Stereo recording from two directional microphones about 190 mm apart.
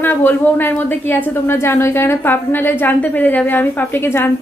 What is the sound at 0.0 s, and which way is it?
Speech, 10° left (ahead or behind).